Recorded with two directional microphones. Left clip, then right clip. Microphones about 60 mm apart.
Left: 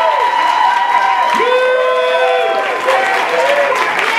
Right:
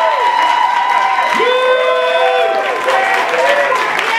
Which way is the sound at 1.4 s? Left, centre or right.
Centre.